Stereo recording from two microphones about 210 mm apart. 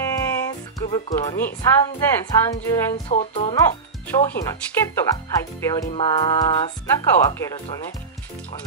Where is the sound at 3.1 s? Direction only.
30° left (ahead or behind).